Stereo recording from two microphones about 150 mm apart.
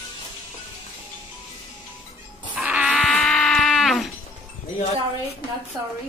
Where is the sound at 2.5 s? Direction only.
5° right (ahead or behind).